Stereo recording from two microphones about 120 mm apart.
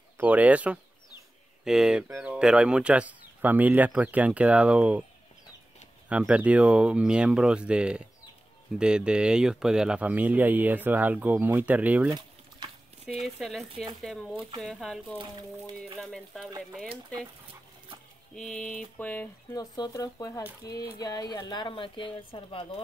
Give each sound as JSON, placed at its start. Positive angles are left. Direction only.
{"t": 0.2, "sound": "speech", "side_deg": -10}
{"t": 2.0, "sound": "speech", "side_deg": -20}
{"t": 2.3, "sound": "speech", "side_deg": -5}
{"t": 6.0, "sound": "speech", "side_deg": -10}
{"t": 12.1, "sound": "boiling", "side_deg": -35}
{"t": 13.1, "sound": "speech", "side_deg": 0}
{"t": 15.1, "sound": "speech", "side_deg": -40}
{"t": 15.7, "sound": "speech", "side_deg": 5}
{"t": 18.3, "sound": "speech", "side_deg": 5}
{"t": 19.5, "sound": "speech", "side_deg": 35}